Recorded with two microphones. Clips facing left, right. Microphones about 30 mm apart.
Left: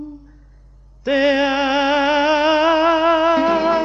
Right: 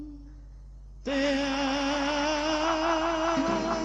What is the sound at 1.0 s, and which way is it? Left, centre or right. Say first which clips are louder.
Music: left 11 dB; left.